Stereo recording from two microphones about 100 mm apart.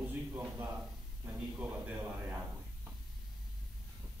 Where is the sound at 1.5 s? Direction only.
20° right (ahead or behind).